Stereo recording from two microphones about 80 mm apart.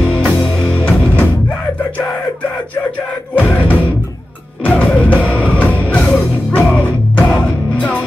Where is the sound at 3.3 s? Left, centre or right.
Left.